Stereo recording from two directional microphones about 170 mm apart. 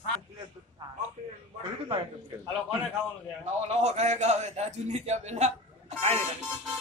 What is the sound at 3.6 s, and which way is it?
A man's voice, 40° right (ahead or behind).